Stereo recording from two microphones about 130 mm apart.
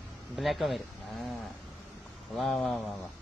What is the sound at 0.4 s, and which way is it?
Speech, centre (ahead or behind).